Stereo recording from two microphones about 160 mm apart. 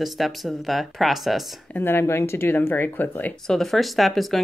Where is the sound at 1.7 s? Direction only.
15° left (ahead or behind).